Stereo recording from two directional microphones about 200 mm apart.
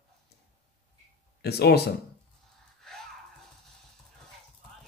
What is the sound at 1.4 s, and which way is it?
Speech, 55° left (ahead or behind).